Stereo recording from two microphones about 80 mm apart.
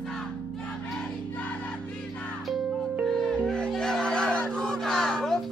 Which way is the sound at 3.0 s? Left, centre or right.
Centre.